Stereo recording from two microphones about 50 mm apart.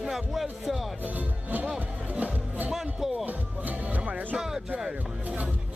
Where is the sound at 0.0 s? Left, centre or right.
Centre.